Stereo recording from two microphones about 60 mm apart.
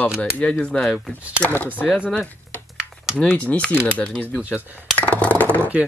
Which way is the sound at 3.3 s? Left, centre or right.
Left.